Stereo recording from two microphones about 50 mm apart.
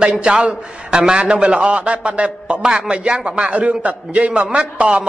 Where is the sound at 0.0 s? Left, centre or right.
Centre.